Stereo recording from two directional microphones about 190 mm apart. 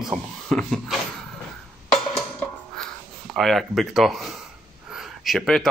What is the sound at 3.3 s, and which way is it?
Speech, centre (ahead or behind).